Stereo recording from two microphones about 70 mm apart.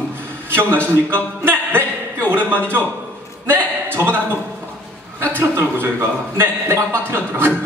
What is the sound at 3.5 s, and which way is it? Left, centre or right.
Speech, right.